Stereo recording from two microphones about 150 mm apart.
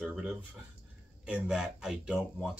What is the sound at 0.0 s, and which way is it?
Speech, 5° right (ahead or behind).